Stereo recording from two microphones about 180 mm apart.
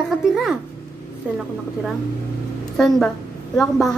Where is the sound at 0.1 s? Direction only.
Centre (ahead or behind).